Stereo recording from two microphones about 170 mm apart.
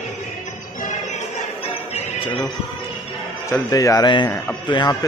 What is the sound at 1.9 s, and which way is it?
Music, 35° left (ahead or behind).